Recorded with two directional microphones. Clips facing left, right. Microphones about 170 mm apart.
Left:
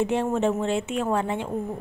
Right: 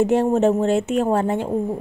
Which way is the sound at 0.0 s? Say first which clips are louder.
Right 6 dB; 40° right (ahead or behind).